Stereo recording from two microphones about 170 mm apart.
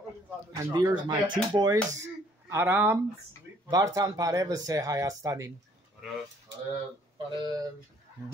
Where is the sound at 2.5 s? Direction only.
15° right (ahead or behind).